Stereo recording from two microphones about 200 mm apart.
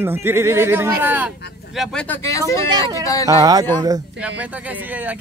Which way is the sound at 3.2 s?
20° right (ahead or behind).